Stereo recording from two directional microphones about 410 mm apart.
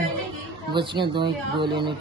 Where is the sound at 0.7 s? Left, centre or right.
Centre.